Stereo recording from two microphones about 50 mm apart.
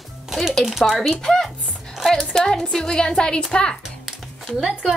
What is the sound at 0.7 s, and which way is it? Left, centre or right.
Speech, centre.